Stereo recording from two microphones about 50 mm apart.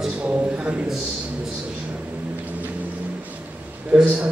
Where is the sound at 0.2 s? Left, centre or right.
Right.